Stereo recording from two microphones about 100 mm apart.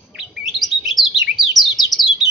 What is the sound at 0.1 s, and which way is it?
Chirp, 5° right (ahead or behind).